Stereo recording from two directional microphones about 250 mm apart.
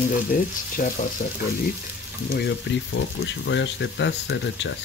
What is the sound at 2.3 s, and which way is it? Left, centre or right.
Speech, left.